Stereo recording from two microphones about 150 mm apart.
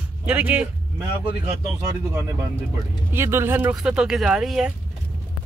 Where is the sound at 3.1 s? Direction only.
15° right (ahead or behind).